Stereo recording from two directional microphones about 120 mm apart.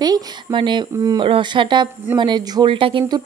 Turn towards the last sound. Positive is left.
turn(degrees=-45)  # may be behind; listen again after turning